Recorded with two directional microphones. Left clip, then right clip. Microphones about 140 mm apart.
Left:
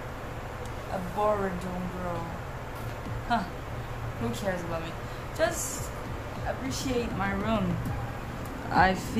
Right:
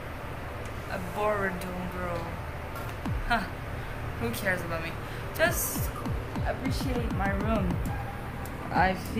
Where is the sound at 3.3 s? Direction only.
20° left (ahead or behind).